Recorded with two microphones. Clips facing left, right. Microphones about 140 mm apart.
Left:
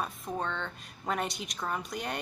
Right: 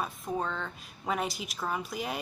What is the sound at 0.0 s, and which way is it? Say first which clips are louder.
Speech: right 1 dB; 5° right (ahead or behind).